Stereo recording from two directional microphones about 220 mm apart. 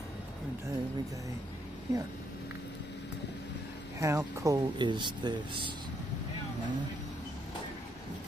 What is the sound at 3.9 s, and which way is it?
Speech, 15° right (ahead or behind).